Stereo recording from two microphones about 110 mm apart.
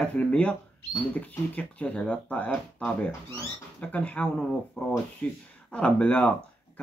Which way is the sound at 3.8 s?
10° left (ahead or behind).